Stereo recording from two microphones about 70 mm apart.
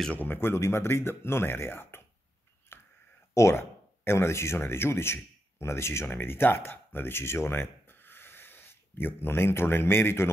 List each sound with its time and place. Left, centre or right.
0.1 s speech: left
2.7 s a sound: left
3.3 s speech: left